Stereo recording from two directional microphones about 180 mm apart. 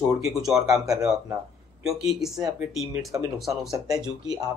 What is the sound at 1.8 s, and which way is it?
Speech, centre (ahead or behind).